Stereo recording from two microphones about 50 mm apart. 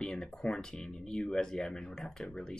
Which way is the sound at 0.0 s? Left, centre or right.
Centre.